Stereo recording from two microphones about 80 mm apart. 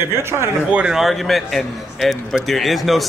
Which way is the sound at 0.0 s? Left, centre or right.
Right.